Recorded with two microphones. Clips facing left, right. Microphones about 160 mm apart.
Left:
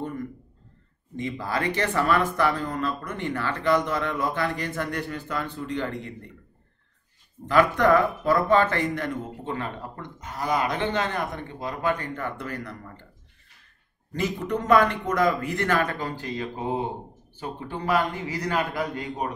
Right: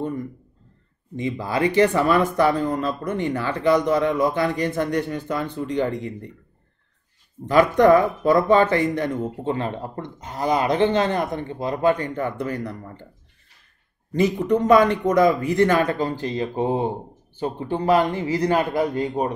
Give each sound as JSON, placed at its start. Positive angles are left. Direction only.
{"t": 1.1, "sound": "speech", "side_deg": -15}
{"t": 7.4, "sound": "speech", "side_deg": -20}
{"t": 9.4, "sound": "speech", "side_deg": -30}
{"t": 14.1, "sound": "speech", "side_deg": -20}